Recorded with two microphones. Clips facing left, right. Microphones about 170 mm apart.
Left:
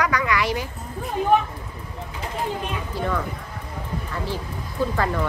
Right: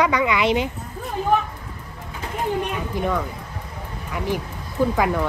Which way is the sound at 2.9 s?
15° right (ahead or behind).